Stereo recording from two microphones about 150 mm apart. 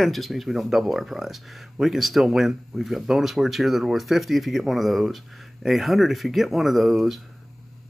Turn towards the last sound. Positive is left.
turn(degrees=0)  # may be behind; listen again after turning